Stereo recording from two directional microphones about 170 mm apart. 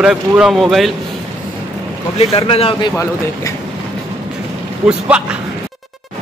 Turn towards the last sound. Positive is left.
turn(degrees=-5)  # may be behind; listen again after turning